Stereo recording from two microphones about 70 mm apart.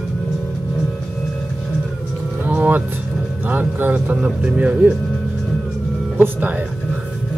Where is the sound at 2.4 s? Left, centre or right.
Right.